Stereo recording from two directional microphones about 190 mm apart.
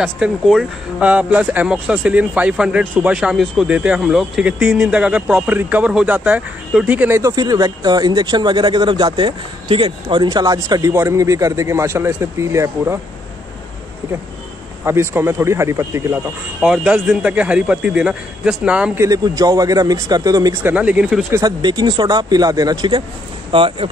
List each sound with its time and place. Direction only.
0.0 s speech: centre (ahead or behind)
14.9 s a man's voice: 10° right (ahead or behind)
19.0 s speech: 20° right (ahead or behind)
20.7 s speech: 5° right (ahead or behind)
21.3 s speech: 20° right (ahead or behind)